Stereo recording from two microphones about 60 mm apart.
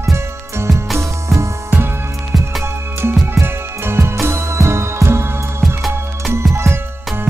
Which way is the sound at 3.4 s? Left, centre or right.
Right.